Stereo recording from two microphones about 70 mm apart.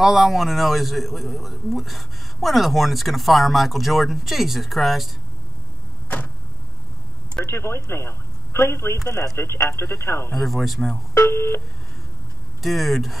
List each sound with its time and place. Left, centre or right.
0.0 s a man's voice: centre
6.0 s vehicle: left
7.4 s a man's voice: left
10.3 s a man's voice: centre
11.1 s a man's voice: left
12.6 s a man's voice: centre